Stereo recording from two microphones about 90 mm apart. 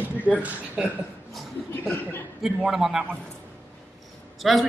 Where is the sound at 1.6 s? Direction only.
25° left (ahead or behind).